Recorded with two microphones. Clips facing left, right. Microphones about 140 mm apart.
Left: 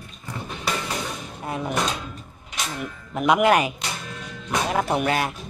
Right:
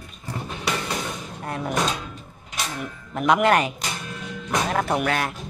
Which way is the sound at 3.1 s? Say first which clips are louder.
Left 1 dB; 5° left (ahead or behind).